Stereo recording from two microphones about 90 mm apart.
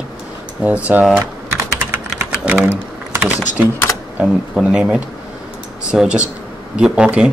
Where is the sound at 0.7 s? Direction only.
15° right (ahead or behind).